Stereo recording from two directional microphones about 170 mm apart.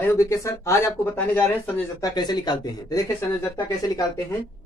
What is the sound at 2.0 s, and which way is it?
Speech, 25° left (ahead or behind).